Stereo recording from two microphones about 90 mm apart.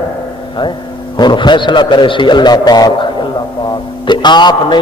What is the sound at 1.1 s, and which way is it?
A man's voice, 55° left (ahead or behind).